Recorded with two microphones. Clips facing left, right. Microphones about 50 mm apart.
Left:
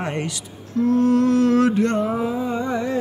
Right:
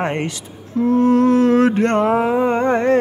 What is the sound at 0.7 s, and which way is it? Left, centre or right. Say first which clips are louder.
Mantra: right 3 dB; right.